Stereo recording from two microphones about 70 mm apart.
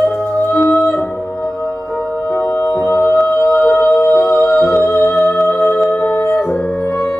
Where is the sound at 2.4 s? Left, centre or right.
Left.